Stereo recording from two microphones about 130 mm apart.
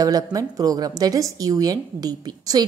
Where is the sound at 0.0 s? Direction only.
30° right (ahead or behind).